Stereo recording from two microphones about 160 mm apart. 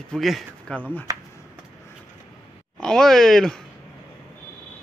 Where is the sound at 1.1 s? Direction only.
25° right (ahead or behind).